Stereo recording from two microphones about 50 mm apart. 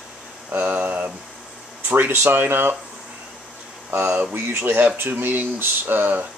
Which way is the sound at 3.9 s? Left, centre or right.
Right.